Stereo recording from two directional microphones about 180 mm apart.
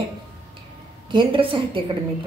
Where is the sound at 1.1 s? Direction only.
25° right (ahead or behind).